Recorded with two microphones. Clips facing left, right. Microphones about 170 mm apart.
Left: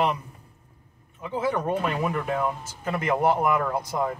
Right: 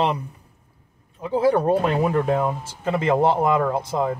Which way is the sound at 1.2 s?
35° right (ahead or behind).